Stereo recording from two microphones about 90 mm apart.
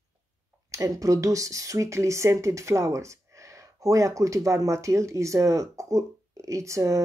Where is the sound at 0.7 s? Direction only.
35° right (ahead or behind).